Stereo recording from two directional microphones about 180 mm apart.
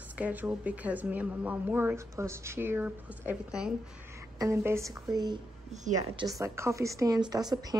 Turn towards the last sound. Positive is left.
turn(degrees=-20)  # may be behind; listen again after turning